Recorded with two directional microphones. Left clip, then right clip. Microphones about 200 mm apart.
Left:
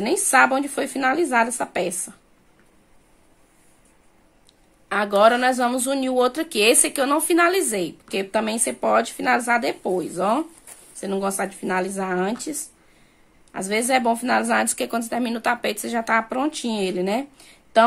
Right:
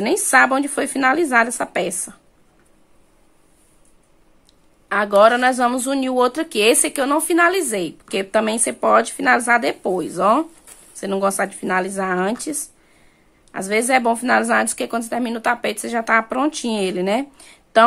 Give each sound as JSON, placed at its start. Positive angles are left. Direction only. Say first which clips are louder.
{"t": 0.0, "sound": "a woman's voice", "louder": "right 2 dB", "side_deg": -15}
{"t": 4.8, "sound": "a woman's voice", "louder": "right 3 dB", "side_deg": -15}